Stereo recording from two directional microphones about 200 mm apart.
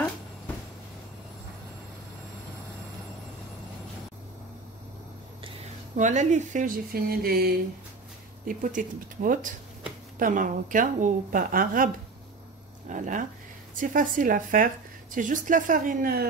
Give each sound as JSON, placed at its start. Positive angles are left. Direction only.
{"t": 5.9, "sound": "a woman's voice", "side_deg": -35}